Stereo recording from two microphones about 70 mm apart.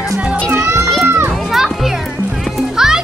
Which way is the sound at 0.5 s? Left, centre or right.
Right.